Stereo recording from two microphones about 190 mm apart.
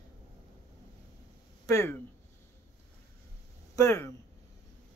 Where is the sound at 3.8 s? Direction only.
15° left (ahead or behind).